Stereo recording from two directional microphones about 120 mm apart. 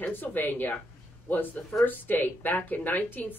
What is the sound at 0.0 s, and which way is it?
Speech, 15° left (ahead or behind).